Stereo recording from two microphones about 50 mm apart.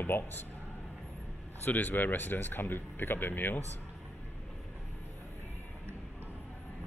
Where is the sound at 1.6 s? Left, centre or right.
Left.